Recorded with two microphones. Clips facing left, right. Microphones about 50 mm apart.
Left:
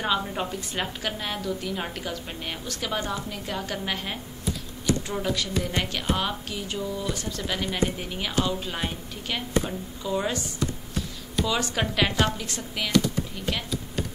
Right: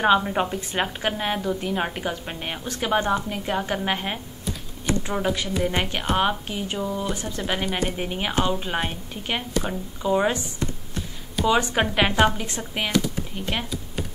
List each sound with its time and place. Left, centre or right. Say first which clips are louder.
0.0 s a woman's voice: right 7 dB; right